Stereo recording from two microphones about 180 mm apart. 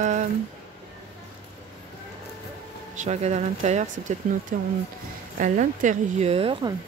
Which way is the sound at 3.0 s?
40° right (ahead or behind).